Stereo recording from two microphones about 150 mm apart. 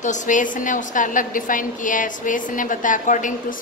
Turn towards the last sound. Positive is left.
turn(degrees=60)  # may be behind; listen again after turning